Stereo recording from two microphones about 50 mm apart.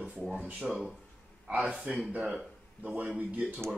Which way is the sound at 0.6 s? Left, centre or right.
Centre.